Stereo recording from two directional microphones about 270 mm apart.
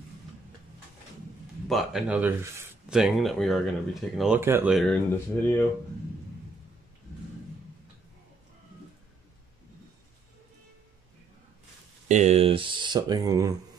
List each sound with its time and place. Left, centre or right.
1.7 s speech: centre
12.1 s speech: right